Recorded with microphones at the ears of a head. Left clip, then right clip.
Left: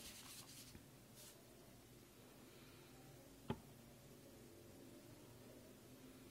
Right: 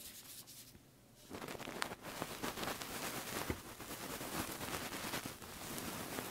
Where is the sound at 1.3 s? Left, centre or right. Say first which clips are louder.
Right 18 dB; right.